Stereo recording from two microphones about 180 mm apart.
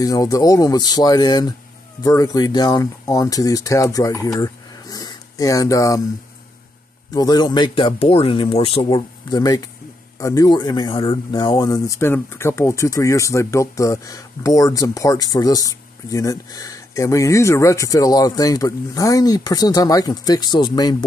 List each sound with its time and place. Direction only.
0.0 s speech: 20° left (ahead or behind)
7.2 s speech: 25° left (ahead or behind)